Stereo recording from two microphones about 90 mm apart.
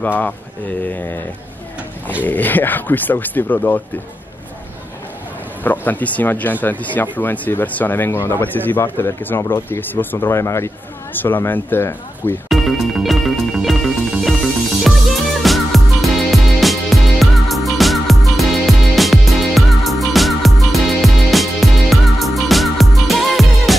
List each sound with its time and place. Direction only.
0.0 s speech: 20° left (ahead or behind)
2.2 s speech: 20° left (ahead or behind)
5.6 s speech: 20° left (ahead or behind)
12.4 s music: centre (ahead or behind)